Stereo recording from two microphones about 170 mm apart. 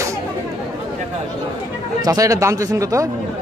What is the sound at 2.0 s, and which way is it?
Speech, 20° right (ahead or behind).